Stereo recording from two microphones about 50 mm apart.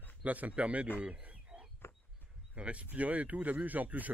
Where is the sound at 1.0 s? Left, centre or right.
Right.